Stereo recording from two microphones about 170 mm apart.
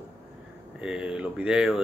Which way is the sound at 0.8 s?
5° right (ahead or behind).